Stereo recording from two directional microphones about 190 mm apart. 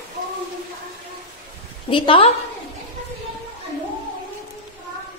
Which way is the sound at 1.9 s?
30° left (ahead or behind).